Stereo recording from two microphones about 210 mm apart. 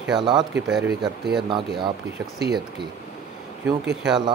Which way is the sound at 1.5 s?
25° right (ahead or behind).